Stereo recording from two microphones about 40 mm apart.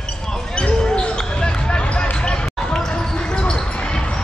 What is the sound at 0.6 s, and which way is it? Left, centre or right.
Basketball bounce, left.